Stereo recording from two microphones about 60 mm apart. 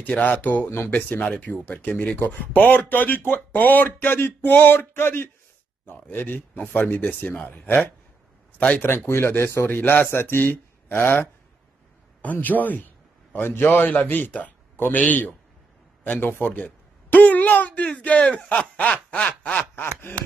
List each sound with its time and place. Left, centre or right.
0.0 s a man's voice: left
5.9 s speech: left
7.0 s a man's voice: left
8.8 s speech: left
9.8 s a man's voice: left